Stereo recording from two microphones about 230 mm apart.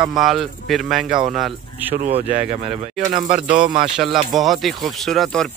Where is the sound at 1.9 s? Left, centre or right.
Right.